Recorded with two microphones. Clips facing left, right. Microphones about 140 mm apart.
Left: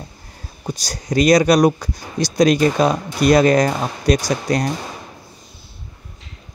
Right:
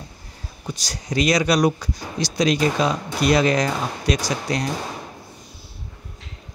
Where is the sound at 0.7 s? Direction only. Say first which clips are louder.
Left 5 dB; 40° left (ahead or behind).